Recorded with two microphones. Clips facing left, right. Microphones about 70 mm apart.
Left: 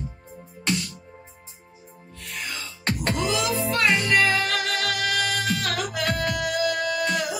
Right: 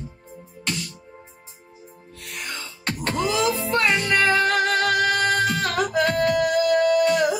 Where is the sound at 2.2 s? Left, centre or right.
Right.